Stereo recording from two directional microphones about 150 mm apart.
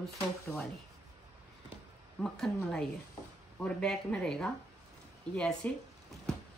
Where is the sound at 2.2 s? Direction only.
5° left (ahead or behind).